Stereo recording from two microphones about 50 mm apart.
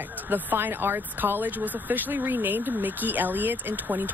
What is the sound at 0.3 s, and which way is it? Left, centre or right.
Speech, right.